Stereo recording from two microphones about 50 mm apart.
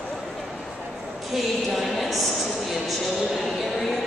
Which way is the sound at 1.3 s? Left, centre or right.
Centre.